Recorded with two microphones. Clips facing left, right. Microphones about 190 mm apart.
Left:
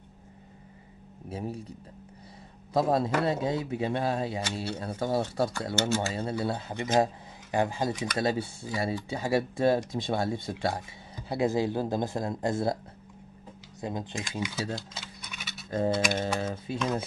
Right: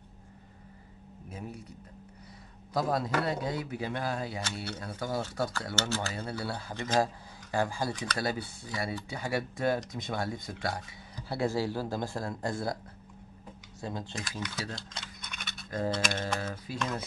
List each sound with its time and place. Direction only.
1.3 s a man's voice: 30° left (ahead or behind)
2.7 s speech: 25° left (ahead or behind)
13.7 s speech: 20° left (ahead or behind)
15.0 s a sound: 5° left (ahead or behind)
16.1 s speech: 20° left (ahead or behind)